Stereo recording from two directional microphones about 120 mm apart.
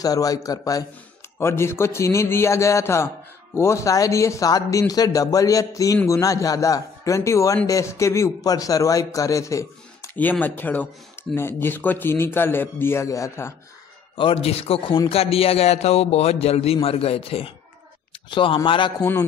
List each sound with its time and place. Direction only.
0.0 s a man's voice: 30° left (ahead or behind)
10.4 s a man's voice: 15° left (ahead or behind)
14.1 s a man's voice: 50° left (ahead or behind)